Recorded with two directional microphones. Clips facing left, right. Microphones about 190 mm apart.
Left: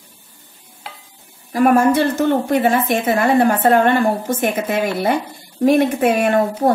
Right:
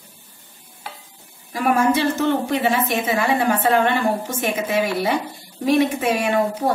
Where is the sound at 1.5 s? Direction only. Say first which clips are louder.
Left 5 dB; 50° left (ahead or behind).